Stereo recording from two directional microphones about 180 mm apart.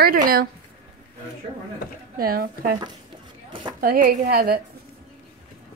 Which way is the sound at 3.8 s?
50° right (ahead or behind).